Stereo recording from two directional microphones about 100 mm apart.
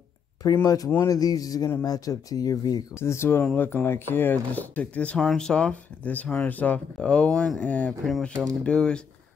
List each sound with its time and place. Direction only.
0.7 s speech: 35° left (ahead or behind)
3.0 s speech: 25° left (ahead or behind)
8.0 s speech: centre (ahead or behind)